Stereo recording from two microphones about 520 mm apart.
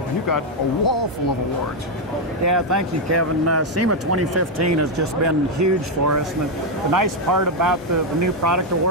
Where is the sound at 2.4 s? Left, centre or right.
Right.